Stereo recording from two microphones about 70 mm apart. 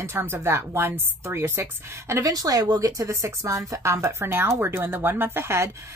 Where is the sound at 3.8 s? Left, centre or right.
Right.